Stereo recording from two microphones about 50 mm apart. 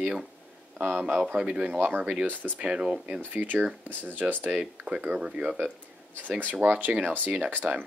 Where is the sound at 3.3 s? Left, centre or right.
Right.